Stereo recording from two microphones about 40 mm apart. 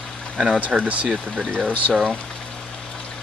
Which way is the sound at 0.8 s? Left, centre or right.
Right.